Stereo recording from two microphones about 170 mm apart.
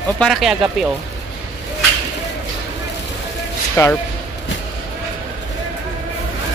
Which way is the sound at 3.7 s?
15° left (ahead or behind).